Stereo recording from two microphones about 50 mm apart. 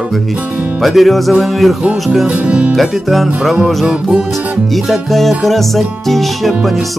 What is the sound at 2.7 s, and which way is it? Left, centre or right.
Speech, centre.